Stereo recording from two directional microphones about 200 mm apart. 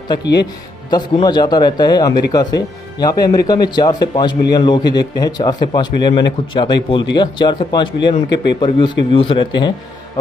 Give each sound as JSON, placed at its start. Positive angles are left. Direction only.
{"t": 0.2, "sound": "speech", "side_deg": 55}
{"t": 0.8, "sound": "a man's voice", "side_deg": 20}